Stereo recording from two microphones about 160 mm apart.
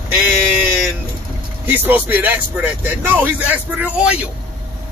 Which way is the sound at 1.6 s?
10° right (ahead or behind).